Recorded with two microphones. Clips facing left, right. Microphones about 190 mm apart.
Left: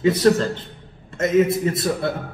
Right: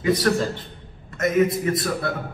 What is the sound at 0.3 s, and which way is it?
A man's voice, 25° left (ahead or behind).